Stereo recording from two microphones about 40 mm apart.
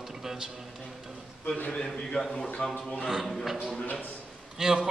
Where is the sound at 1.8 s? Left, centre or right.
Centre.